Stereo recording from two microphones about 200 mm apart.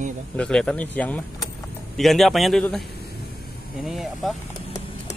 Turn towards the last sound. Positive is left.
turn(degrees=0)  # may be behind; listen again after turning